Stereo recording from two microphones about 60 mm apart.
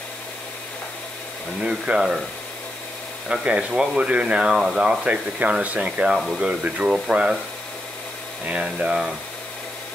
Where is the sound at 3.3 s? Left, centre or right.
Centre.